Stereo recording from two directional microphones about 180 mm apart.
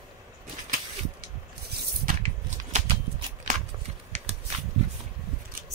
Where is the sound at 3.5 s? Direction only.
45° right (ahead or behind).